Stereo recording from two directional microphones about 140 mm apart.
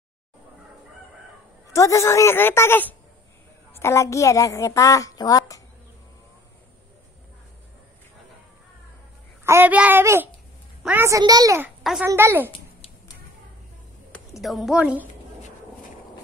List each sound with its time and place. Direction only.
1.7 s a woman's voice: 20° left (ahead or behind)
9.4 s a child's voice: 15° right (ahead or behind)
11.1 s a child's voice: 25° right (ahead or behind)
14.4 s a child's voice: centre (ahead or behind)